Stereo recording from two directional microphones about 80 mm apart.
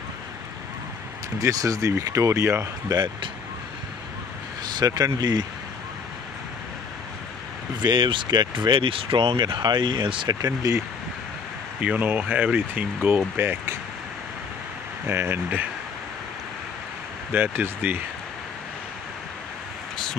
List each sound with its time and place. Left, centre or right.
1.4 s speech: right
2.9 s speech: right
4.6 s speech: right
7.8 s speech: right
10.4 s speech: right
11.8 s speech: centre
15.0 s speech: right
17.3 s speech: right